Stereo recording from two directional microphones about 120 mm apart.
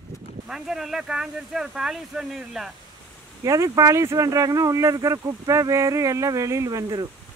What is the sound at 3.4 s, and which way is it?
Speech, 25° right (ahead or behind).